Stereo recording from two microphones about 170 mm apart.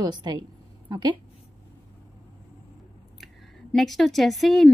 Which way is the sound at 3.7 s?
Centre (ahead or behind).